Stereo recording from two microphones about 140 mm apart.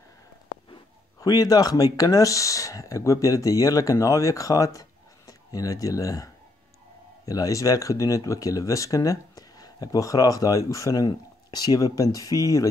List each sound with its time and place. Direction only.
1.2 s speech: 25° left (ahead or behind)